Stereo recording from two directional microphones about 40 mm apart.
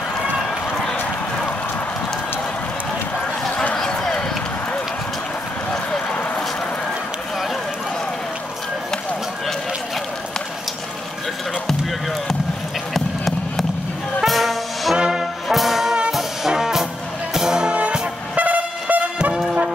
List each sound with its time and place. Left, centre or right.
3.7 s run: centre
5.7 s run: left
12.9 s music: centre
15.0 s brass instrument: centre
15.4 s brass instrument: centre
17.3 s music: centre
18.3 s vehicle: right